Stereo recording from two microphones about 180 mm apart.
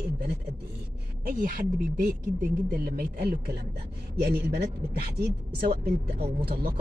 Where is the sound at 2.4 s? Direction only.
55° right (ahead or behind).